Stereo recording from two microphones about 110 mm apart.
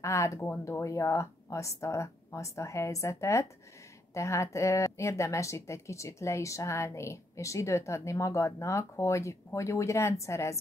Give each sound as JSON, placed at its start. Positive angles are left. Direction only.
{"t": 0.0, "sound": "speech", "side_deg": 25}